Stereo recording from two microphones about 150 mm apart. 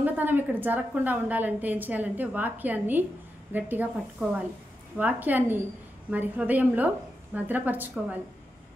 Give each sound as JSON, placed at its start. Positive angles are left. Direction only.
{"t": 0.0, "sound": "a woman's voice", "side_deg": -10}